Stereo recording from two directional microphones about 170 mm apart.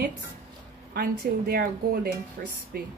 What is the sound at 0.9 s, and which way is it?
Speech, 60° right (ahead or behind).